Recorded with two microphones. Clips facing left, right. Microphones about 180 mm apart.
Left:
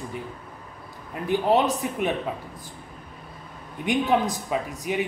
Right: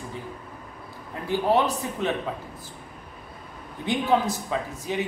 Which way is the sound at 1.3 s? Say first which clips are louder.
Left 1 dB; 20° left (ahead or behind).